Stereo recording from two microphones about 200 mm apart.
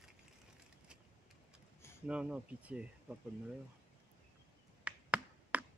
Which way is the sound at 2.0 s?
5° right (ahead or behind).